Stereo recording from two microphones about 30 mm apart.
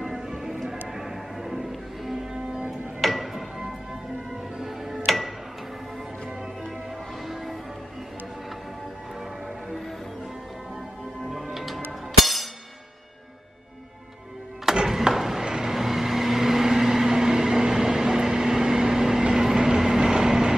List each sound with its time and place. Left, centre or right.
0.3 s music: centre
0.7 s a sound: centre
2.1 s music: centre
11.5 s music: centre
14.9 s a sound: centre
15.4 s vehicle: right
15.7 s vehicle: centre